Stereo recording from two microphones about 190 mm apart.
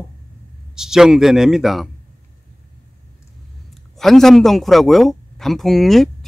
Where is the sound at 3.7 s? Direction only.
Centre (ahead or behind).